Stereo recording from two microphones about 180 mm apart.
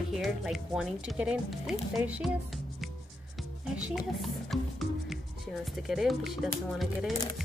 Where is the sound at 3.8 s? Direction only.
Centre (ahead or behind).